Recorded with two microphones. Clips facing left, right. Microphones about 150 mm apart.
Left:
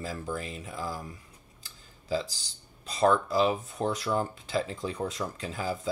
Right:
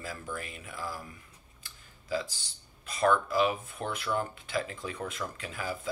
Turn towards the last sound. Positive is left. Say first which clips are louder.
# left 4 dB
turn(degrees=30)  # may be behind; listen again after turning